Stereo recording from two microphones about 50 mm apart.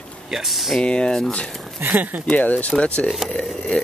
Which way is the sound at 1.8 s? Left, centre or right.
Right.